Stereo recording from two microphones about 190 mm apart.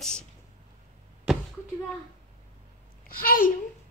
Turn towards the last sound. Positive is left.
turn(degrees=50)  # may be behind; listen again after turning